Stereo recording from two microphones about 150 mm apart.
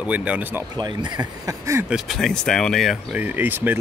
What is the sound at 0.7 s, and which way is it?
Speech, 30° right (ahead or behind).